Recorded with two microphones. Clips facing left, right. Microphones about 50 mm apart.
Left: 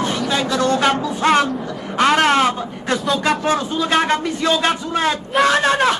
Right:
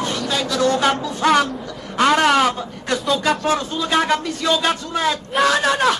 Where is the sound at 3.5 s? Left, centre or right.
Left.